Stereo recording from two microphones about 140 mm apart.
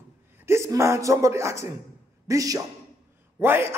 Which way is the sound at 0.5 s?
20° right (ahead or behind).